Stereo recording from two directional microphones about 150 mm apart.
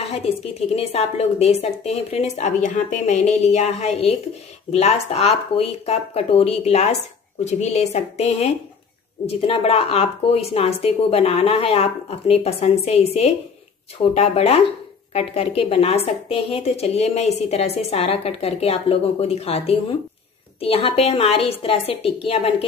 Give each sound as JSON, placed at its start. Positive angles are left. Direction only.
{"t": 0.0, "sound": "a woman's voice", "side_deg": 45}